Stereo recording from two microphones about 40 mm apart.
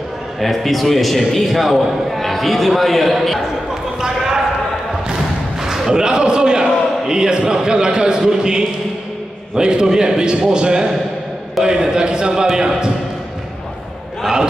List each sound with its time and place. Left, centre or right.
0.4 s a man's voice: centre
4.0 s basketball bounce: centre
5.6 s a man's voice: centre